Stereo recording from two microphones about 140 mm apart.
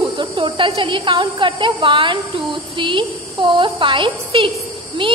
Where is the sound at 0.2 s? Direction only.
35° right (ahead or behind).